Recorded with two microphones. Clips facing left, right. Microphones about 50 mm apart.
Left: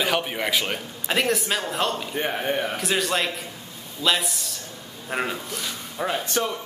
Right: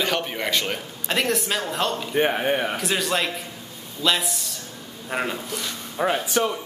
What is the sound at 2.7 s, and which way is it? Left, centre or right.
Speech, centre.